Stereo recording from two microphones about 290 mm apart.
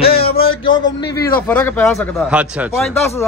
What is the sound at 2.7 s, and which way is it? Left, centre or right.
Speech, centre.